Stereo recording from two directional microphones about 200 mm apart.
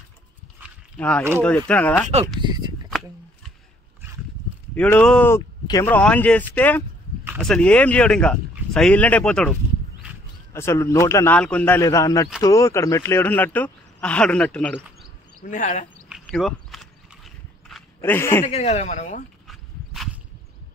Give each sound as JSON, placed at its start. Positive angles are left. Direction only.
{"t": 0.9, "sound": "speech", "side_deg": 5}
{"t": 2.4, "sound": "speech", "side_deg": -20}
{"t": 4.7, "sound": "speech", "side_deg": 5}
{"t": 15.4, "sound": "speech", "side_deg": 40}
{"t": 16.1, "sound": "a sound", "side_deg": 0}
{"t": 18.4, "sound": "speech", "side_deg": 35}
{"t": 19.4, "sound": "a sound", "side_deg": 0}